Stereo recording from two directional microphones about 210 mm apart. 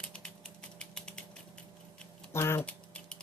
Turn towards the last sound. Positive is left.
turn(degrees=5)  # may be behind; listen again after turning